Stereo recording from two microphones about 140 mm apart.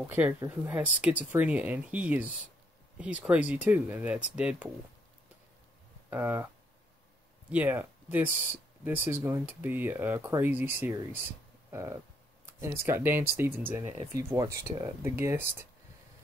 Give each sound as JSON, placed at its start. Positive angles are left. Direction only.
{"t": 0.0, "sound": "speech", "side_deg": -15}
{"t": 6.0, "sound": "speech", "side_deg": -15}
{"t": 7.5, "sound": "speech", "side_deg": -10}